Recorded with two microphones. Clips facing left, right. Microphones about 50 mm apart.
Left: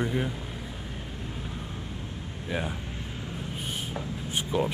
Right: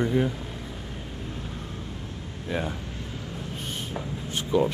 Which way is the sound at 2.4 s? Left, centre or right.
Centre.